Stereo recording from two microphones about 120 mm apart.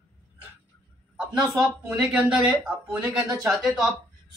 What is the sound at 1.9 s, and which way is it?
Speech, 5° right (ahead or behind).